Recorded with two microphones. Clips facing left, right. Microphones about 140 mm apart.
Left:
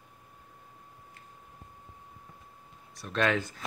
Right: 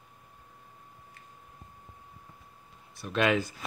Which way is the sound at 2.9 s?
5° right (ahead or behind).